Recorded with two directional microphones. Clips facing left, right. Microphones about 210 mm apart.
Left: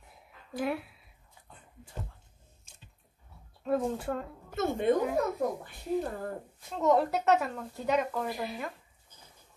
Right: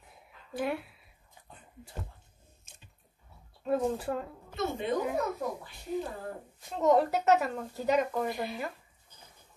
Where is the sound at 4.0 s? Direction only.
5° right (ahead or behind).